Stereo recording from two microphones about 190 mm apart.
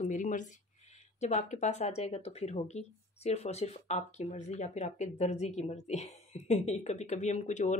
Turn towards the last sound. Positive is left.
turn(degrees=40)  # may be behind; listen again after turning